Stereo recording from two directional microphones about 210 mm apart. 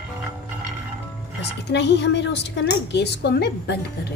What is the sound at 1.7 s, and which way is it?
A woman's voice, 55° left (ahead or behind).